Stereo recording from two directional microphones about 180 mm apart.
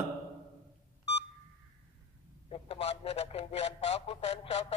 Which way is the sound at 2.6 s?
35° left (ahead or behind).